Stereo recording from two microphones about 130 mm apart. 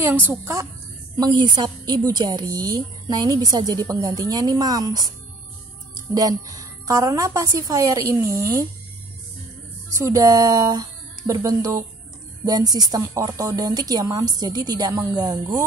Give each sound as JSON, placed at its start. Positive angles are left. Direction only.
{"t": 0.0, "sound": "a woman's voice", "side_deg": -15}
{"t": 1.1, "sound": "a woman's voice", "side_deg": -30}
{"t": 6.1, "sound": "a woman's voice", "side_deg": -30}
{"t": 9.9, "sound": "a woman's voice", "side_deg": -25}